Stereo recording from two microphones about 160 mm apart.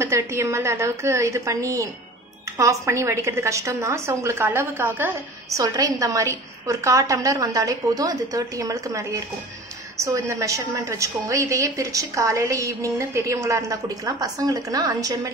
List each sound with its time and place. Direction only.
0.0 s a woman's voice: 15° right (ahead or behind)